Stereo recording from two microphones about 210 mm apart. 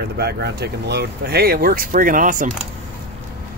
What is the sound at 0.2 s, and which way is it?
Speech, 50° right (ahead or behind).